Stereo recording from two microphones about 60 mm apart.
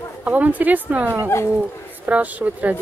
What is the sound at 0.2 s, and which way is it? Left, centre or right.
Speech, right.